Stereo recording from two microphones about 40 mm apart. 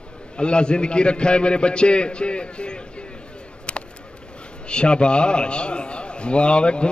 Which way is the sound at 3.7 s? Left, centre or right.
Left.